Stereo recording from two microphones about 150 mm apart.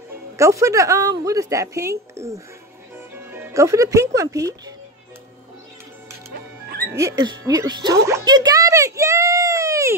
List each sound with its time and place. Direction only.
0.4 s a woman's voice: 20° right (ahead or behind)
6.3 s music: 90° right
6.9 s a woman's voice: 20° right (ahead or behind)